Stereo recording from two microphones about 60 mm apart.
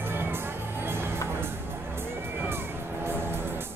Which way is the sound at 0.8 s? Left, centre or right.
Right.